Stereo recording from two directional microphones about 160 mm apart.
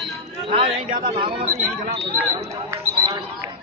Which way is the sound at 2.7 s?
20° right (ahead or behind).